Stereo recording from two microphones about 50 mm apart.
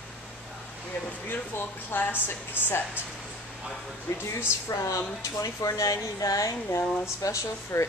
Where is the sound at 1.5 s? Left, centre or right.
Left.